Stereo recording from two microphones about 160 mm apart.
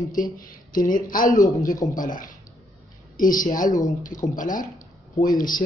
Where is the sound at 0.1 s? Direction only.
60° left (ahead or behind).